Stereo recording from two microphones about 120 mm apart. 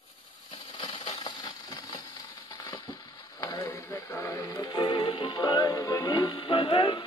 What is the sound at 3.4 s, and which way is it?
Music, 25° left (ahead or behind).